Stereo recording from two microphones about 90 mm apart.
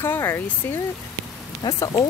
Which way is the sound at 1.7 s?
45° left (ahead or behind).